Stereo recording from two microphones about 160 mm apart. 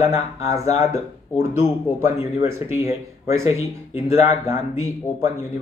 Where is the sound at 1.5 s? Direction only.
15° right (ahead or behind).